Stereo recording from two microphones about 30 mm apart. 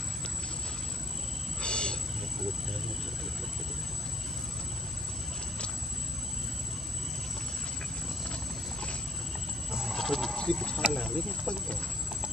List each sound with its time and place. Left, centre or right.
1.6 s a sound: left
9.8 s sheep: centre
10.3 s speech: left